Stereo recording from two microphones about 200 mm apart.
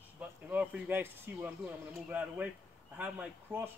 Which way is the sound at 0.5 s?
5° right (ahead or behind).